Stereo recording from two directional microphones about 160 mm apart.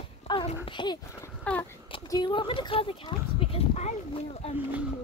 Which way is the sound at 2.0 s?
25° left (ahead or behind).